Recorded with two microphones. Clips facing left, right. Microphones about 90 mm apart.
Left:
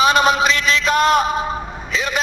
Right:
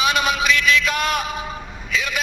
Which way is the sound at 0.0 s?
35° left (ahead or behind).